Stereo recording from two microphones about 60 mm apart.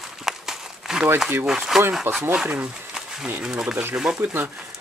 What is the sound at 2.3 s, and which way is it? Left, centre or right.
Speech, right.